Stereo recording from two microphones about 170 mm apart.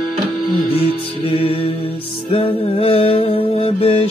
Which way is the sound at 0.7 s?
35° left (ahead or behind).